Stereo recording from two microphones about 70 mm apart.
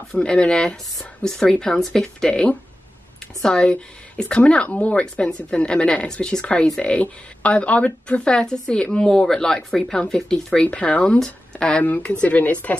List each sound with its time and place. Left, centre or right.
0.1 s speech: centre